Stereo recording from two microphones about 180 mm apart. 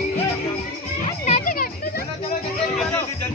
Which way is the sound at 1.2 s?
45° left (ahead or behind).